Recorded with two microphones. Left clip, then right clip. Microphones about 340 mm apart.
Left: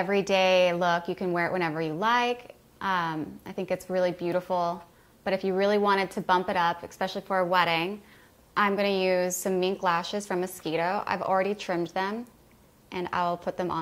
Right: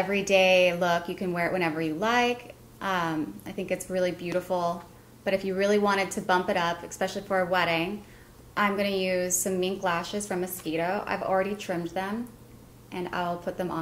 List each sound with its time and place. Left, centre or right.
0.1 s a woman's voice: left
8.5 s a woman's voice: left